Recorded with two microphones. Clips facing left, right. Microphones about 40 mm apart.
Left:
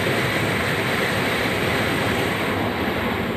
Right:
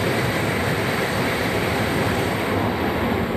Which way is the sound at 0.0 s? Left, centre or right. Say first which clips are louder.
Even; left.